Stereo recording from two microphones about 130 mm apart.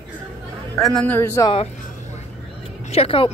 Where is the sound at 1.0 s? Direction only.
20° left (ahead or behind).